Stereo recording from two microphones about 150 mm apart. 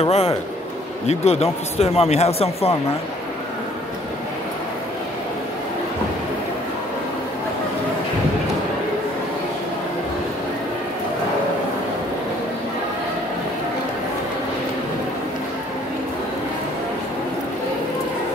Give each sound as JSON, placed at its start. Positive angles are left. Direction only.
{"t": 0.0, "sound": "speech", "side_deg": 45}